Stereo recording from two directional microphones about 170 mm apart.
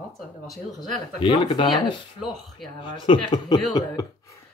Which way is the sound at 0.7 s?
30° left (ahead or behind).